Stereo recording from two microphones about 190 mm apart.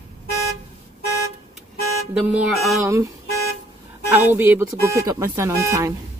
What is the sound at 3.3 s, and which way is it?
Toot, 55° left (ahead or behind).